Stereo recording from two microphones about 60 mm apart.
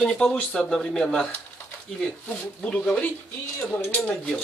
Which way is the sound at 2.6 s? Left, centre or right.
Left.